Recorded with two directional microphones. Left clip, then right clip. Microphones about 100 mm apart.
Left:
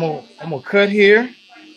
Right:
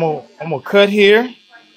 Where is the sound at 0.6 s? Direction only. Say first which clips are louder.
Right 2 dB; 5° right (ahead or behind).